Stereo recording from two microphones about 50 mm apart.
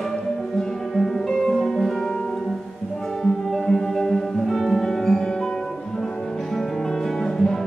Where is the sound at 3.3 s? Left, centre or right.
Centre.